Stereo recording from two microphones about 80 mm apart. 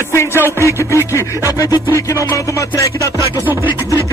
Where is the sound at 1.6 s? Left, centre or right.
Left.